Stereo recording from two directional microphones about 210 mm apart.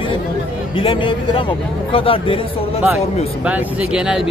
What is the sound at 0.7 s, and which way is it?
Speech, 25° left (ahead or behind).